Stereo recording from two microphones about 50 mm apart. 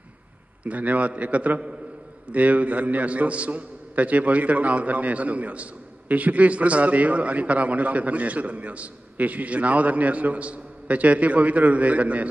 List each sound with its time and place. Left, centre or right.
0.7 s a man's voice: right